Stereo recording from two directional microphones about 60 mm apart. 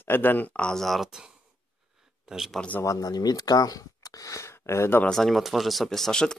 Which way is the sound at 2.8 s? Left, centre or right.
Left.